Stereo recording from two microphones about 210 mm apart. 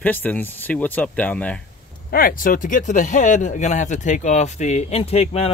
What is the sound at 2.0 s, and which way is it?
Speech, 45° left (ahead or behind).